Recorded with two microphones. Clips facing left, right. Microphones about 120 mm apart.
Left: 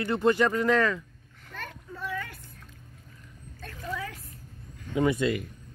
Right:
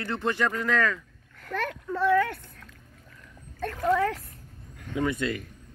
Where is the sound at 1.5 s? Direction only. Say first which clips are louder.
Right 11 dB; 90° right; by 4.2 s 70° right (ahead or behind).